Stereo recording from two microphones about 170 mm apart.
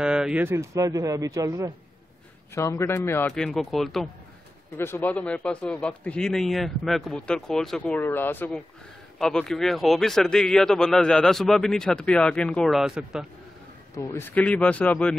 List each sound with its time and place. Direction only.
0.0 s speech: 5° right (ahead or behind)
2.5 s speech: 15° left (ahead or behind); by 4.1 s centre (ahead or behind)
4.7 s a man's voice: 15° left (ahead or behind); by 13.3 s 5° right (ahead or behind)
13.9 s speech: 15° left (ahead or behind)